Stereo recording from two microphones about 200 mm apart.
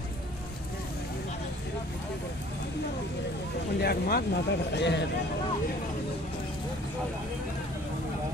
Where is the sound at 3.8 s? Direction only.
50° left (ahead or behind).